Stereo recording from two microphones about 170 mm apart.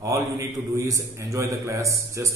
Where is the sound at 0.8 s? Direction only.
20° right (ahead or behind).